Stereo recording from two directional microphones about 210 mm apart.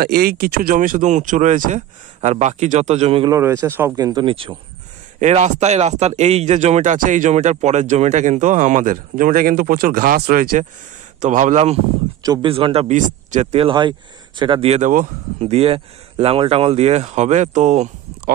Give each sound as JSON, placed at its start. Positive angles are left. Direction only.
{"t": 0.0, "sound": "speech", "side_deg": -45}
{"t": 3.6, "sound": "speech", "side_deg": -10}
{"t": 5.2, "sound": "speech", "side_deg": -35}
{"t": 12.2, "sound": "speech", "side_deg": -20}